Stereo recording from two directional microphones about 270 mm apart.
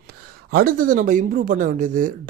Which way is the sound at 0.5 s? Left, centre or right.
Right.